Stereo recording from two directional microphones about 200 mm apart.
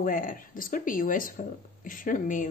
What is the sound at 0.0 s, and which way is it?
Speech, 45° left (ahead or behind).